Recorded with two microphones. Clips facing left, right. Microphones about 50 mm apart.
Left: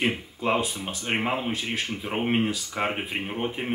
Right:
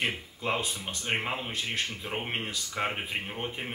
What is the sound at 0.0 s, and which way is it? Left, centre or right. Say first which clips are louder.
Speech: left 5 dB; centre.